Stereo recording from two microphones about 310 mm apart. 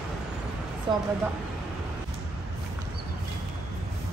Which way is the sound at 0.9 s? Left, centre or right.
Centre.